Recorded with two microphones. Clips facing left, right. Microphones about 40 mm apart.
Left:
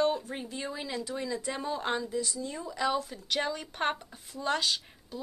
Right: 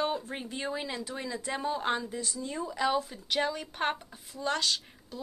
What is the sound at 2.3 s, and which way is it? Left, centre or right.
Speech, centre.